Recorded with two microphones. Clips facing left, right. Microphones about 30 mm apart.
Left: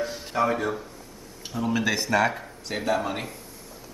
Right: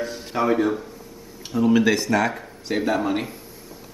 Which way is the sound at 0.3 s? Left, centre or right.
Centre.